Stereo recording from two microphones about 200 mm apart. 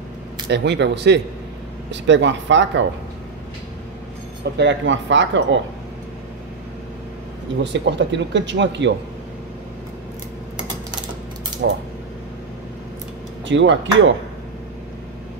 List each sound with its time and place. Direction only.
0.5 s speech: 60° right (ahead or behind)
4.6 s speech: 65° right (ahead or behind)
7.6 s speech: 60° right (ahead or behind)
11.6 s speech: 70° right (ahead or behind)
13.5 s speech: 65° right (ahead or behind)